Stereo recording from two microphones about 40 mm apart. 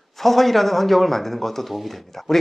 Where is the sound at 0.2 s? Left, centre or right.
Centre.